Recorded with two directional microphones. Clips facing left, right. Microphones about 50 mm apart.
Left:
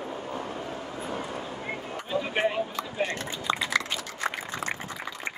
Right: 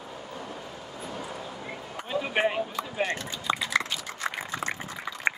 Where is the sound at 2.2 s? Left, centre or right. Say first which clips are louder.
Right 2 dB; centre.